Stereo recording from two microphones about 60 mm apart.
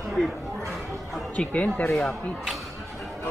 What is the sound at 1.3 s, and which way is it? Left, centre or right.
Speech, left.